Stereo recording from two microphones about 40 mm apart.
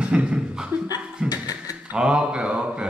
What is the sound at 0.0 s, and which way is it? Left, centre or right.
Chuckle, right.